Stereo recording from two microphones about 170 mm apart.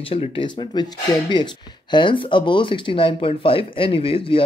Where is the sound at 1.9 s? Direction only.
30° left (ahead or behind).